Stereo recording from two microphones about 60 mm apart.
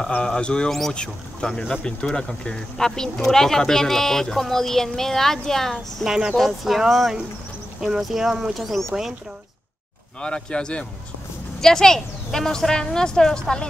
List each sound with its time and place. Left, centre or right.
0.1 s speech: centre
6.0 s speech: centre
10.2 s speech: centre